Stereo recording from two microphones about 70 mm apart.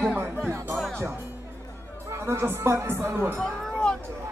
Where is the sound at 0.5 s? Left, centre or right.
Right.